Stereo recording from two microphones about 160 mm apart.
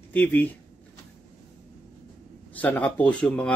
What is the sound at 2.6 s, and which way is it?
Speech, 10° left (ahead or behind).